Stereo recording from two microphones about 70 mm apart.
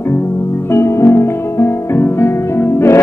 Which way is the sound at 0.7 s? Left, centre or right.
Left.